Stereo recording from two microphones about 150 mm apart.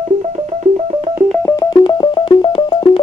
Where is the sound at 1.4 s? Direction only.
25° left (ahead or behind).